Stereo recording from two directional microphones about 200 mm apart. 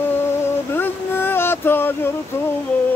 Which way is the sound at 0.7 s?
10° left (ahead or behind).